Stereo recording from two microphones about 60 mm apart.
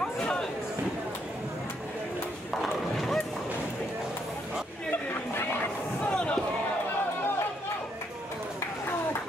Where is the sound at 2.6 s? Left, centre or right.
Centre.